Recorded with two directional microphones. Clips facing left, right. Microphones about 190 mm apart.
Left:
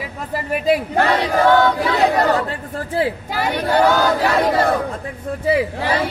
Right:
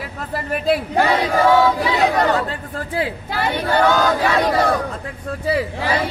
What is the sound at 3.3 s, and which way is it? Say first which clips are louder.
A woman's voice: left 1 dB; 10° left (ahead or behind).